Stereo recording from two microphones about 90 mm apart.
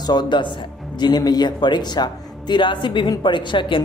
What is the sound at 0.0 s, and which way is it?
Speech, 55° left (ahead or behind).